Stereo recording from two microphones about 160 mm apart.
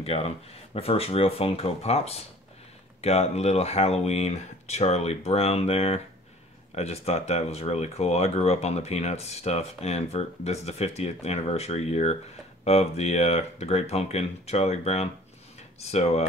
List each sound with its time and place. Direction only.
0.0 s speech: 40° left (ahead or behind)